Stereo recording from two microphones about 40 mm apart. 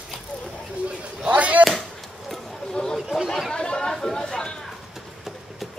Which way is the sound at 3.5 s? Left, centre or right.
Centre.